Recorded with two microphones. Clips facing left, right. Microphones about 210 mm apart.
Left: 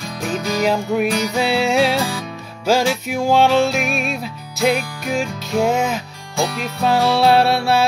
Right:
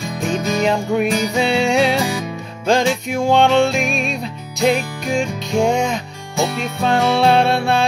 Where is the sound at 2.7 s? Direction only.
5° left (ahead or behind).